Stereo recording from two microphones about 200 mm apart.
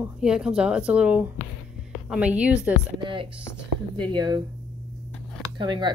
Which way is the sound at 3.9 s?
25° right (ahead or behind).